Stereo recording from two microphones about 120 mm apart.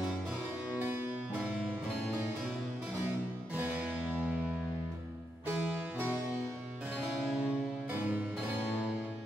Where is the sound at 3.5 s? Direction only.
15° right (ahead or behind).